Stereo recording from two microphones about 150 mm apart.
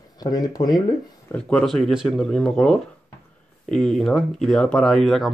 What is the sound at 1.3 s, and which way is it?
Speech, 5° left (ahead or behind).